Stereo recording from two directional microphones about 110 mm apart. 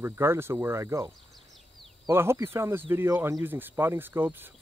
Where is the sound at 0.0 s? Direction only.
20° right (ahead or behind).